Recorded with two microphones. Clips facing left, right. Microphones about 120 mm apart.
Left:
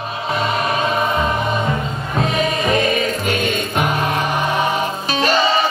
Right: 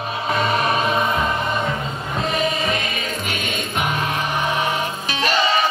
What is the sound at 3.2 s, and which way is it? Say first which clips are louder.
Music: left 7 dB; 40° left (ahead or behind).